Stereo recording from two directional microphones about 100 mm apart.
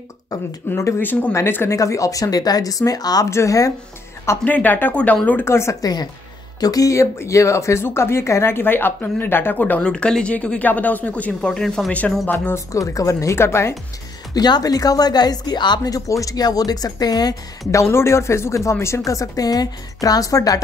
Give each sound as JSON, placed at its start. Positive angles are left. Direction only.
{"t": 0.7, "sound": "speech", "side_deg": 25}
{"t": 1.8, "sound": "speech", "side_deg": 35}
{"t": 4.3, "sound": "speech", "side_deg": 15}
{"t": 5.4, "sound": "speech", "side_deg": 25}
{"t": 12.7, "sound": "speech", "side_deg": 35}
{"t": 14.3, "sound": "speech", "side_deg": 40}